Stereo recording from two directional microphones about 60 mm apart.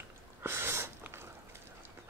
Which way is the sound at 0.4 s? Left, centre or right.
Right.